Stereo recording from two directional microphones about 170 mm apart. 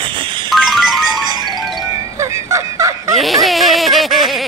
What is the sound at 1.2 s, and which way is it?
Music, 25° right (ahead or behind).